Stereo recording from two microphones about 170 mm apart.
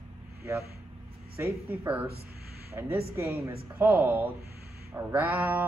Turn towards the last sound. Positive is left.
turn(degrees=-10)  # may be behind; listen again after turning